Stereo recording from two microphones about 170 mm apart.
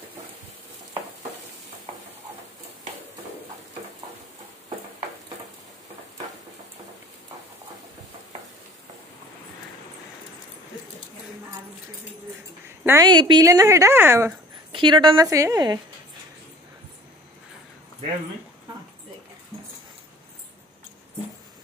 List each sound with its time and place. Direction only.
12.8 s a woman's voice: 15° right (ahead or behind)
13.1 s a woman's voice: 25° right (ahead or behind)
14.7 s a woman's voice: 30° right (ahead or behind)